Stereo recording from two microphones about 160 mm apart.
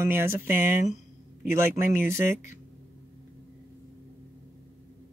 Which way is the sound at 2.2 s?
50° left (ahead or behind).